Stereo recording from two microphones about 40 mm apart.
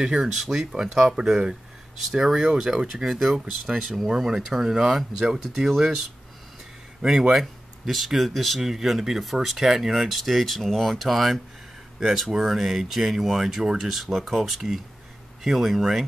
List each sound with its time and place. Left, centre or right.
0.0 s speech: centre
2.2 s speech: centre
7.1 s speech: centre